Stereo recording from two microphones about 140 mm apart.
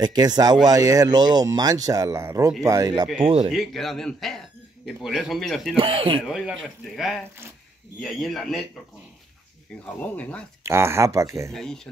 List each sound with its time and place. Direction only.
0.0 s speech: 30° right (ahead or behind)
3.2 s speech: 40° right (ahead or behind)
3.4 s speech: centre (ahead or behind)
5.8 s speech: 40° right (ahead or behind)
6.2 s speech: 5° right (ahead or behind)
10.0 s speech: 10° left (ahead or behind)
10.6 s speech: 20° right (ahead or behind)
11.5 s speech: 5° left (ahead or behind)